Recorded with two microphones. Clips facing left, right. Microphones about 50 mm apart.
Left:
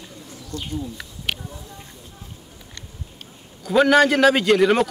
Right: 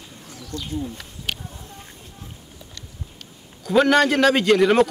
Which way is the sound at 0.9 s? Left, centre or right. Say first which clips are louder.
Left 2 dB; left.